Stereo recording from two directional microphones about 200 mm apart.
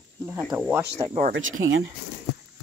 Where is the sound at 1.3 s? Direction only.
85° right.